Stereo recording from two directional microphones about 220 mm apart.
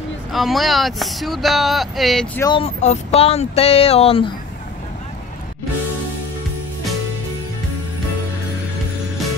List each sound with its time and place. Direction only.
0.3 s speech: centre (ahead or behind)
2.4 s speech: 25° left (ahead or behind)